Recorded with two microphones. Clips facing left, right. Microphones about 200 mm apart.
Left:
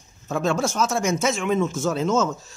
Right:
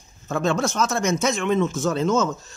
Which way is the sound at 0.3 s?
Centre (ahead or behind).